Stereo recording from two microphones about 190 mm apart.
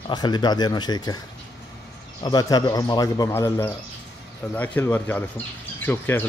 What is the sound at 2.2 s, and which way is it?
Speech, 20° left (ahead or behind).